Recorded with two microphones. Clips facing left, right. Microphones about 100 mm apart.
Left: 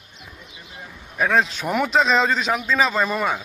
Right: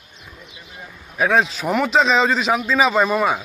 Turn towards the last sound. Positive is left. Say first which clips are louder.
# right 4 dB
turn(degrees=-10)  # may be behind; listen again after turning